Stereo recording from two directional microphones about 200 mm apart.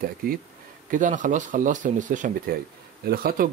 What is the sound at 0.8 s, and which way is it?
Speech, 40° right (ahead or behind).